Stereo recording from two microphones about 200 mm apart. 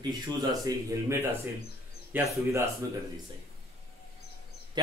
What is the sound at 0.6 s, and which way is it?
Speech, 15° right (ahead or behind).